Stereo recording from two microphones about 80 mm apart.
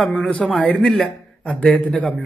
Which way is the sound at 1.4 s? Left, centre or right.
Centre.